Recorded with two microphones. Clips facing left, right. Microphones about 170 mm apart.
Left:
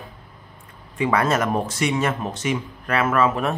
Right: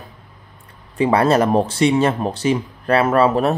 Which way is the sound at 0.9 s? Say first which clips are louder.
Right 6 dB; 35° right (ahead or behind).